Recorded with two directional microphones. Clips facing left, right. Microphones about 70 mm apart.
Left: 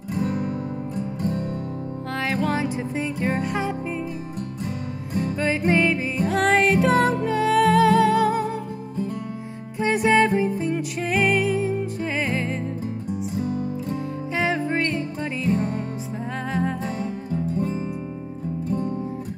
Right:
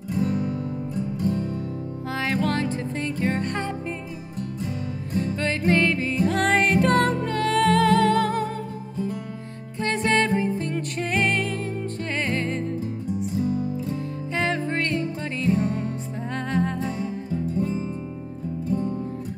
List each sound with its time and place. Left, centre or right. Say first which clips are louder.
0.2 s guitar: right 1 dB; left
2.0 s music: even; centre
5.2 s music: left 2 dB; centre
9.8 s music: left 4 dB; centre
13.9 s music: left 2 dB; centre
17.6 s music: right 2 dB; left